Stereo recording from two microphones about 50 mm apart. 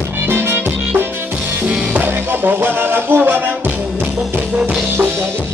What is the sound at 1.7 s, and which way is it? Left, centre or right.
Music, right.